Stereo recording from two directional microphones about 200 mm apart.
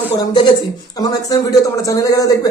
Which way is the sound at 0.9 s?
15° left (ahead or behind).